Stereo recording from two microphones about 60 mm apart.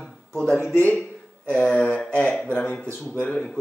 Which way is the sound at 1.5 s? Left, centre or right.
Centre.